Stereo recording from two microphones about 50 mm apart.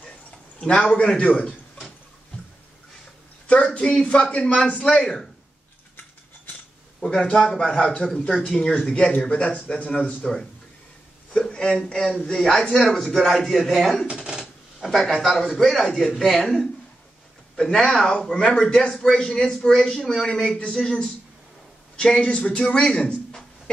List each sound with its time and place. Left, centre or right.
0.6 s a man's voice: centre
3.4 s a man's voice: left
5.0 s a man's voice: centre
7.0 s a man's voice: centre
11.3 s a man's voice: centre
14.4 s a sound: centre
15.4 s a man's voice: centre